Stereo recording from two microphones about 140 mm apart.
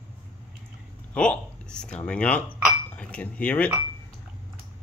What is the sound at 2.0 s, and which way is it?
Speech, 10° left (ahead or behind).